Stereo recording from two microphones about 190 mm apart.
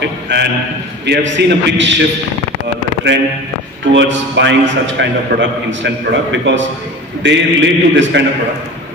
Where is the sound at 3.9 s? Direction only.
70° right (ahead or behind).